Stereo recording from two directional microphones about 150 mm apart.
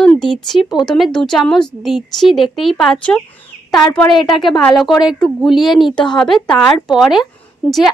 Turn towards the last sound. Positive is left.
turn(degrees=5)  # may be behind; listen again after turning